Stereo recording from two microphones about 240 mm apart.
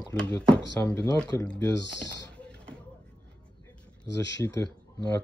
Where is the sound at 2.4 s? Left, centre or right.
Centre.